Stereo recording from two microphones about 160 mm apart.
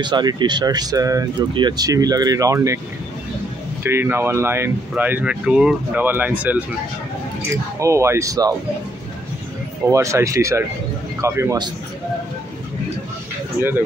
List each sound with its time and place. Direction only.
0.0 s speech: 25° right (ahead or behind)
3.8 s speech: 15° right (ahead or behind)
7.8 s speech: 15° right (ahead or behind)
9.8 s a man's voice: 20° right (ahead or behind)
13.6 s speech: 15° right (ahead or behind)